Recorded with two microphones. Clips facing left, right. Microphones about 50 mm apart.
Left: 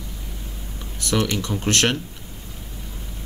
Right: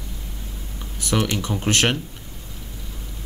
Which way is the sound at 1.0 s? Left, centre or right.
Right.